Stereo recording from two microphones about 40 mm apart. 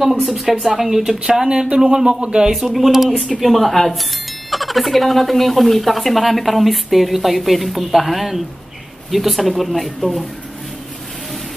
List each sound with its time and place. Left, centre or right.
0.0 s speech: centre
2.5 s speech: centre